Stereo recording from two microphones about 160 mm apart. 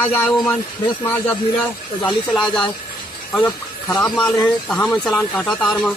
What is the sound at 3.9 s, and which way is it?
Speech, 25° left (ahead or behind).